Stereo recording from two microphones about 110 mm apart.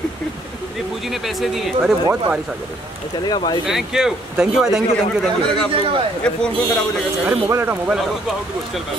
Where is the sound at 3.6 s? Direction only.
5° right (ahead or behind).